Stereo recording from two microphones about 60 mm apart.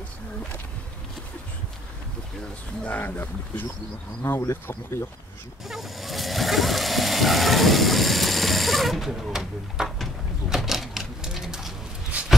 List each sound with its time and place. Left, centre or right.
2.9 s speech: left
5.7 s vehicle: centre
10.5 s typewriter: centre
12.1 s a sound: right